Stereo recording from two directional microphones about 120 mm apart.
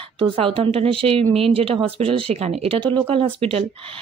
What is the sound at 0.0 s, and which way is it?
Speech, 50° right (ahead or behind).